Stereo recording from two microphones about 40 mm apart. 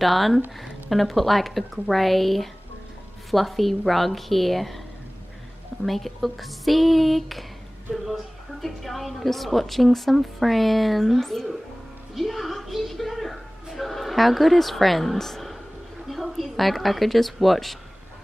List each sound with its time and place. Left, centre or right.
0.0 s a woman's voice: centre
5.9 s a woman's voice: centre
12.2 s a sound: centre
16.1 s a woman's voice: centre